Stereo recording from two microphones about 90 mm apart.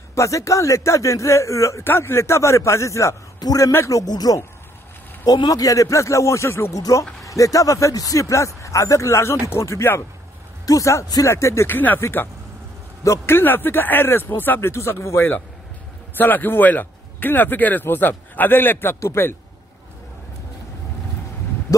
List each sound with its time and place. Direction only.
0.1 s a man's voice: 35° left (ahead or behind)